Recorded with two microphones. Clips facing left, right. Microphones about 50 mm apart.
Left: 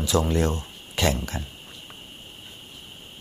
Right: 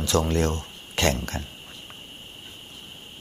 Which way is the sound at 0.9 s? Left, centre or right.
Right.